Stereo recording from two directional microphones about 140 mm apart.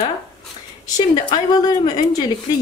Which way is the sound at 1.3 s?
30° left (ahead or behind).